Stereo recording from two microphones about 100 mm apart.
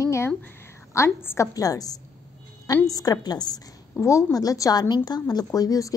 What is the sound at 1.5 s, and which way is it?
Speech, 35° left (ahead or behind).